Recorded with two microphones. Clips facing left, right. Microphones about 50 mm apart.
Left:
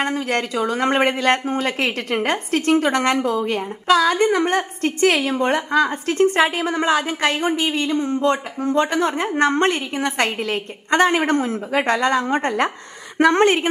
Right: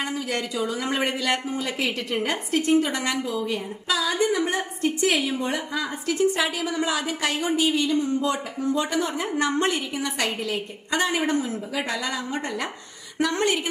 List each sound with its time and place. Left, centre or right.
0.0 s a woman's voice: left